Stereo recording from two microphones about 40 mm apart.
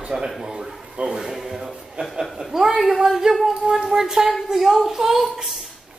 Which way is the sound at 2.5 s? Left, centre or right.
Centre.